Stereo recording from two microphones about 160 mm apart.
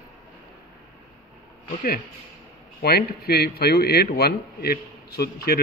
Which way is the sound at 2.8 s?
85° left.